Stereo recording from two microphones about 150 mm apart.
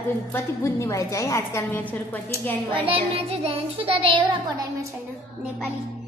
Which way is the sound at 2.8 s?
40° right (ahead or behind).